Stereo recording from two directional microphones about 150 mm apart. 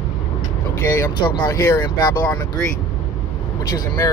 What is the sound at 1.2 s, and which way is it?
Speech, 30° left (ahead or behind).